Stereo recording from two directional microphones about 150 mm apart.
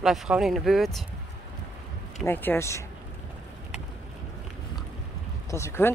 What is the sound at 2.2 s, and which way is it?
Speech, 15° left (ahead or behind).